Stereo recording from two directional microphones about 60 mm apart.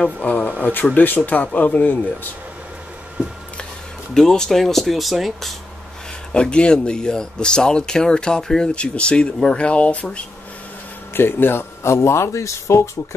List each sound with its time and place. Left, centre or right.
0.5 s a sound: left
0.9 s speech: left
4.1 s speech: centre
6.3 s speech: centre
11.1 s speech: left